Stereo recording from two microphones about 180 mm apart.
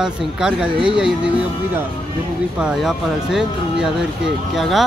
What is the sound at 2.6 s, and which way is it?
Speech, 5° right (ahead or behind).